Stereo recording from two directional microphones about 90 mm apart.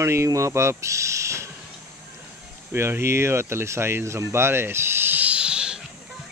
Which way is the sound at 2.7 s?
25° right (ahead or behind).